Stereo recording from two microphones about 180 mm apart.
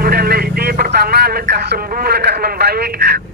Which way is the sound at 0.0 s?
60° right (ahead or behind).